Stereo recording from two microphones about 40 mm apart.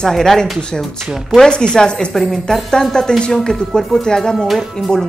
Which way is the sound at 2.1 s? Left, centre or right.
Centre.